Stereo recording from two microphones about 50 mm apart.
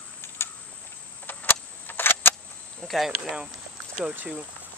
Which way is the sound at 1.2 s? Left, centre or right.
Left.